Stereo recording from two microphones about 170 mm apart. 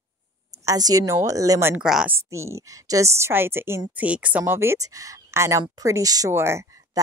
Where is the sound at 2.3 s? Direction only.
15° right (ahead or behind).